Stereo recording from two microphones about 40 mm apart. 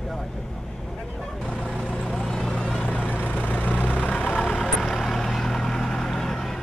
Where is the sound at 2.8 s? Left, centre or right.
Left.